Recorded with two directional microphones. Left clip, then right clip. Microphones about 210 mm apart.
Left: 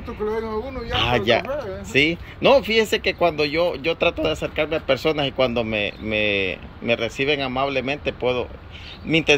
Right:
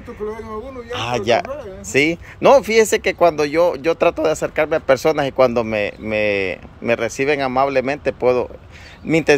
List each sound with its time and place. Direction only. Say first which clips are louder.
0.3 s speech: left 3 dB; 10° right (ahead or behind)
9.1 s speech: right 3 dB; 90° right